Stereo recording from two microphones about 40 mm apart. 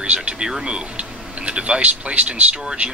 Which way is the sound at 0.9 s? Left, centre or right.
Right.